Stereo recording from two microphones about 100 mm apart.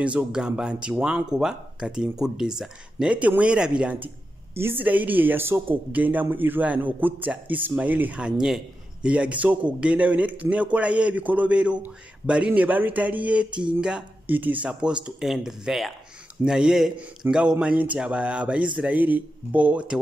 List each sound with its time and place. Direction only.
0.0 s a man's voice: 10° right (ahead or behind)